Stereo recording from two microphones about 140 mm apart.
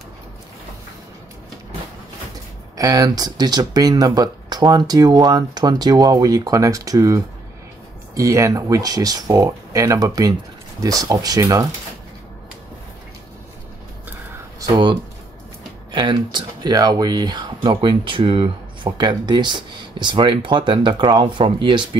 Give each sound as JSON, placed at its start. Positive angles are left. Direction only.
{"t": 2.8, "sound": "speech", "side_deg": -25}
{"t": 15.9, "sound": "speech", "side_deg": -35}